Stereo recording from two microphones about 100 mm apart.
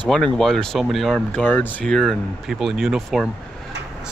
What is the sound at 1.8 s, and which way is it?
Speech, 5° left (ahead or behind).